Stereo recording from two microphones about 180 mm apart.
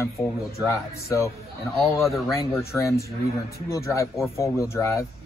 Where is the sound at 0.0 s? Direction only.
15° left (ahead or behind).